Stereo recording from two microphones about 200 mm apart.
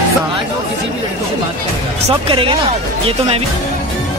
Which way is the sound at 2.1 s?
25° right (ahead or behind).